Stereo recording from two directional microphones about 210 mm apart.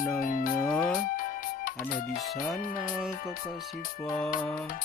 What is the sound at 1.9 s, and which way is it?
Speech, 40° left (ahead or behind).